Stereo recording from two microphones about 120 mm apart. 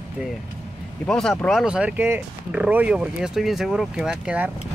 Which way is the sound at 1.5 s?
5° right (ahead or behind).